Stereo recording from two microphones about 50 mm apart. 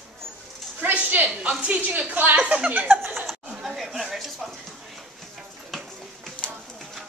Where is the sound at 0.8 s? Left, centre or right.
Right.